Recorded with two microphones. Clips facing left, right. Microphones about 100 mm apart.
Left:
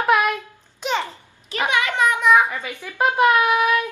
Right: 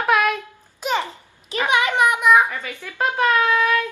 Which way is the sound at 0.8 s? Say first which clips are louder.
Right 1 dB; 5° right (ahead or behind).